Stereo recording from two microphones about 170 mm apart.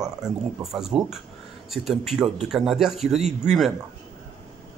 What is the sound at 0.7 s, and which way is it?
Speech, centre (ahead or behind).